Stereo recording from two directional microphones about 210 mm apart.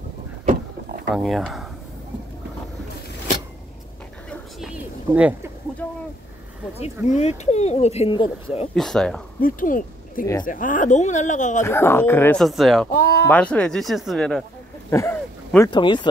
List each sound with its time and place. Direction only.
1.1 s speech: centre (ahead or behind)
4.3 s a sound: centre (ahead or behind)
5.8 s a sound: 5° left (ahead or behind)
7.1 s speech: 30° left (ahead or behind)
8.7 s speech: centre (ahead or behind)
9.4 s speech: 40° left (ahead or behind)
11.6 s speech: 10° left (ahead or behind)
12.9 s speech: 50° left (ahead or behind)
13.3 s speech: 5° left (ahead or behind)
14.9 s a sound: 10° left (ahead or behind)
15.7 s speech: 20° left (ahead or behind)